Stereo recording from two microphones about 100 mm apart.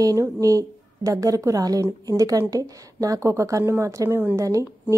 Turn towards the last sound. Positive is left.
turn(degrees=-30)  # may be behind; listen again after turning